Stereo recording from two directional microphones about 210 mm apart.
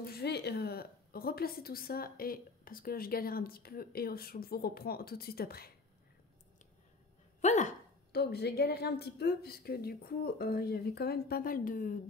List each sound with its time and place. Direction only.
0.0 s a woman's voice: 50° left (ahead or behind)
7.4 s a sound: 35° left (ahead or behind)
8.1 s a woman's voice: 50° left (ahead or behind)